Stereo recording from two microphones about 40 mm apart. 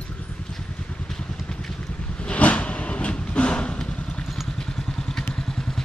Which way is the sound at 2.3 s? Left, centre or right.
Left.